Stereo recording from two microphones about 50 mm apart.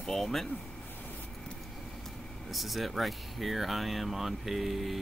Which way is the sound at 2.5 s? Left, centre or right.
Centre.